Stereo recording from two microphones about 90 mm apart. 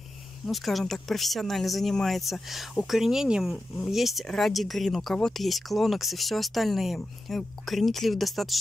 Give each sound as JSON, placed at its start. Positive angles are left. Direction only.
{"t": 0.5, "sound": "speech", "side_deg": 0}